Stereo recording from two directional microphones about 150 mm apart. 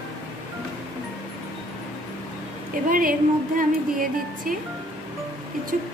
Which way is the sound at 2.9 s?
65° right (ahead or behind).